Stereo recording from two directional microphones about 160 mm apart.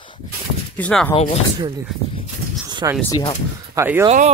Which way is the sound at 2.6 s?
30° right (ahead or behind).